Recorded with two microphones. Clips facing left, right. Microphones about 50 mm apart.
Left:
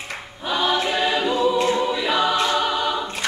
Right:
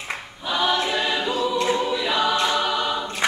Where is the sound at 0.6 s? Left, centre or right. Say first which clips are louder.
Left 1 dB; centre.